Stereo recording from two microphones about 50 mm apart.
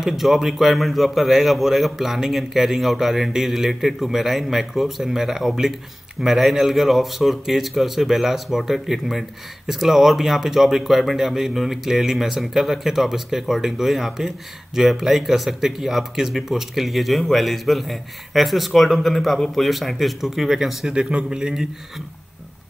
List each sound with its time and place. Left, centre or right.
0.0 s a man's voice: centre
20.9 s speech: centre